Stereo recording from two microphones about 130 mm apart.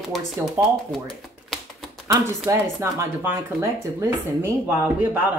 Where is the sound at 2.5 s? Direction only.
20° right (ahead or behind).